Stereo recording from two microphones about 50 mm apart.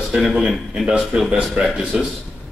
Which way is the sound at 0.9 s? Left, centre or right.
Right.